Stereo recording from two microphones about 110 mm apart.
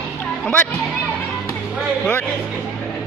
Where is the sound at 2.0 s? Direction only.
10° left (ahead or behind).